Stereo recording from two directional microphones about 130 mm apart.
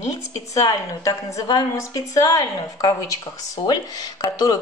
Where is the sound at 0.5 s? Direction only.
25° left (ahead or behind).